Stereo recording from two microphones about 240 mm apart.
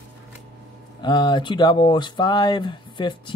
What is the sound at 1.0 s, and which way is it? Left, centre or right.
Speech, centre.